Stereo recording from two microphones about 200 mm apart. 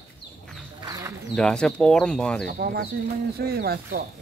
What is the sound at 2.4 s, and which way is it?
Speech, 45° right (ahead or behind).